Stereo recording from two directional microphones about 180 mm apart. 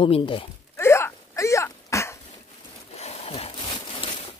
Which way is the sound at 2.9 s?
35° left (ahead or behind).